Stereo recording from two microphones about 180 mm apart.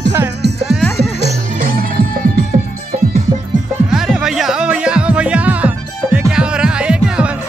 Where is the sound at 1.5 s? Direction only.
55° right (ahead or behind).